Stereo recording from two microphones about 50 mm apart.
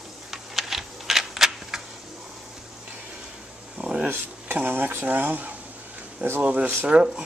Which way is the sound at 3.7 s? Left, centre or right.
Centre.